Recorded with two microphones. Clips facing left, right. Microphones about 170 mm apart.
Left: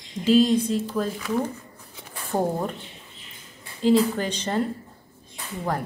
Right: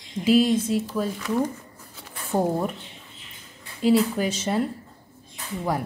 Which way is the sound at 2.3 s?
10° left (ahead or behind).